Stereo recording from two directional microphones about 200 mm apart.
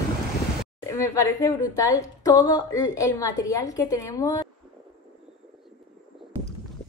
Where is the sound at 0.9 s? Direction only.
15° left (ahead or behind).